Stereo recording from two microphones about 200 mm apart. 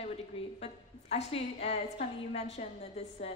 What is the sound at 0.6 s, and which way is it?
A woman's voice, 30° left (ahead or behind).